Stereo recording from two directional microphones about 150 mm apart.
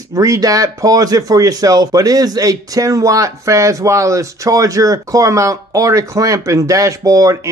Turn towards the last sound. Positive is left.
turn(degrees=-20)  # may be behind; listen again after turning